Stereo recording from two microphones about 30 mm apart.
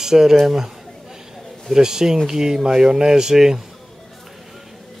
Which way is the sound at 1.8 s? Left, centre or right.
Centre.